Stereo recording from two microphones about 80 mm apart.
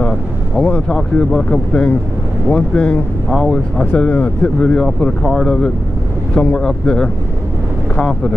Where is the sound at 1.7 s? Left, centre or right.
Centre.